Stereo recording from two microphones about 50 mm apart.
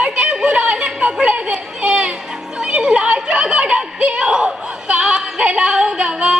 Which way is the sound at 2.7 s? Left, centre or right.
Centre.